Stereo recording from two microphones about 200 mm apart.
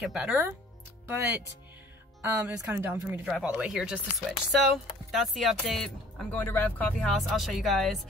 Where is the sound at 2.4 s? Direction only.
10° right (ahead or behind).